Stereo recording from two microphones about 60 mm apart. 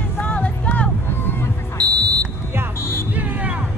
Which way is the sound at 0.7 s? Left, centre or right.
Left.